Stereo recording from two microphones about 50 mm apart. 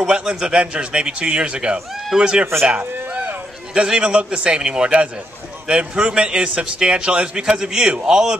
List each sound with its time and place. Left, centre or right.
0.0 s a man's voice: centre
2.8 s a sound: right
3.7 s a man's voice: centre